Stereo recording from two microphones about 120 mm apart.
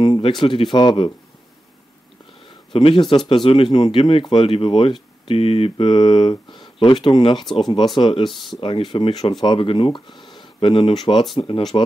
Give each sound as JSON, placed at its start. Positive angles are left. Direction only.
{"t": 0.0, "sound": "speech", "side_deg": 40}
{"t": 2.4, "sound": "a sound", "side_deg": 45}
{"t": 3.3, "sound": "speech", "side_deg": 45}
{"t": 8.3, "sound": "speech", "side_deg": 0}
{"t": 8.5, "sound": "speech", "side_deg": 45}